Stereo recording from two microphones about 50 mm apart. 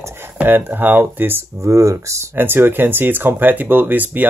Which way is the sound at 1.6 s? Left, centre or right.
Right.